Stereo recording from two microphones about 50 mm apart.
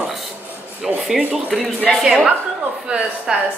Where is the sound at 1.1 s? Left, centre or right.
Centre.